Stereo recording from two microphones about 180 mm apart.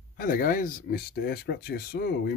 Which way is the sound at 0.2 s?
50° left (ahead or behind).